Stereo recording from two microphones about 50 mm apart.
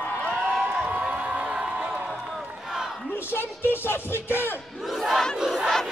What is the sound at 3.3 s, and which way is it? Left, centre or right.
Music, left.